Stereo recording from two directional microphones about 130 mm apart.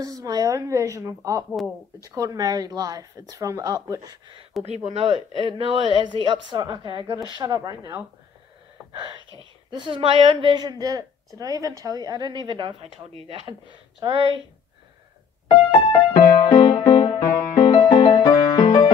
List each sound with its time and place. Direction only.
0.0 s speech: 30° right (ahead or behind)
4.6 s speech: 55° right (ahead or behind); by 8.0 s 25° right (ahead or behind)
9.7 s speech: 40° right (ahead or behind)
15.4 s music: 40° left (ahead or behind)
16.7 s music: 30° left (ahead or behind)